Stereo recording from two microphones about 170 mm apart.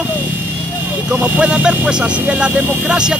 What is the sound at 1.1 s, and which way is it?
Speech, 10° right (ahead or behind).